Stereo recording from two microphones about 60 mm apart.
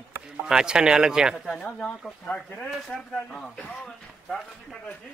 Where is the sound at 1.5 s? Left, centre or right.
Left.